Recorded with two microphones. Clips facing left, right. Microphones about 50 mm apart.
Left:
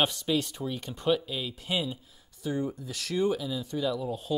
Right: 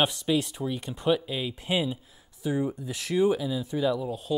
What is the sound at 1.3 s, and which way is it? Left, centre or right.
Speech, right.